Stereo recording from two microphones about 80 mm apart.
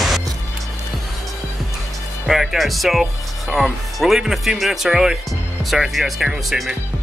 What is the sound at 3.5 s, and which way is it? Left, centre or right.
Speech, centre.